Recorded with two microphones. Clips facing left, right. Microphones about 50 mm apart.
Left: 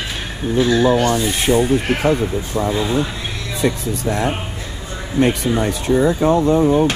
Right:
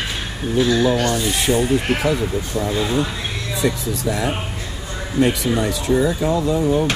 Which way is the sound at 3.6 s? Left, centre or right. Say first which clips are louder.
Left 2 dB; left.